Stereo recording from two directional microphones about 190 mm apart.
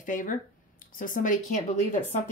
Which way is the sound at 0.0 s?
45° left (ahead or behind).